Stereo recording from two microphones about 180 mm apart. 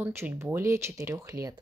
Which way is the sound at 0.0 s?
15° right (ahead or behind).